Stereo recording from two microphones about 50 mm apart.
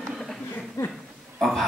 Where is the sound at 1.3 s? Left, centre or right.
Centre.